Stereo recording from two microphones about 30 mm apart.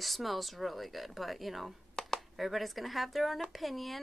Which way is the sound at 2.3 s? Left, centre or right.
Centre.